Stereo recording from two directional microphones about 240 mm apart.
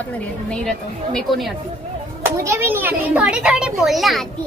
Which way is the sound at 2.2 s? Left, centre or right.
Centre.